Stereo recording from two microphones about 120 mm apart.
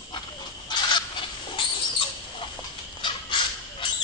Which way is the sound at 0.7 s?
40° left (ahead or behind).